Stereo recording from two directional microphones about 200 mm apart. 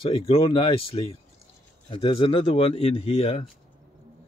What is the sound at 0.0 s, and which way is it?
Speech, 30° left (ahead or behind).